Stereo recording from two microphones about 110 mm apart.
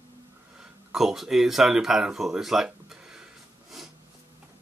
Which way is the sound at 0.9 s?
5° right (ahead or behind).